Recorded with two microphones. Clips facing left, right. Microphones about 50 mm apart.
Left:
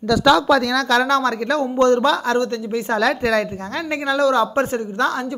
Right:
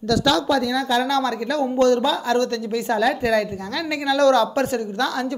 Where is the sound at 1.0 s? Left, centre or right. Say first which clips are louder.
Left 3 dB; left.